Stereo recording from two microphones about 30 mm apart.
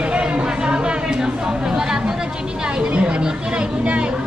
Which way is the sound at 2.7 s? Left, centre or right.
Right.